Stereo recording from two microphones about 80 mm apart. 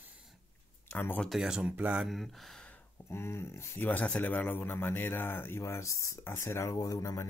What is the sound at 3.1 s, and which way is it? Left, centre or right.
Speech, left.